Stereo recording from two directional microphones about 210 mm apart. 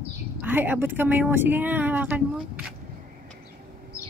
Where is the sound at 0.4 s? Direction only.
10° right (ahead or behind).